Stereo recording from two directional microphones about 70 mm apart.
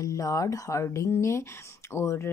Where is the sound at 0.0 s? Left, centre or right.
Left.